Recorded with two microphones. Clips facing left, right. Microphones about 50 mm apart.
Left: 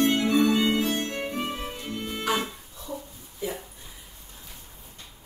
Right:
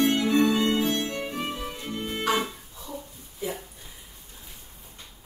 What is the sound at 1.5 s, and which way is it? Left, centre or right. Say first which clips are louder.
Music: even; left.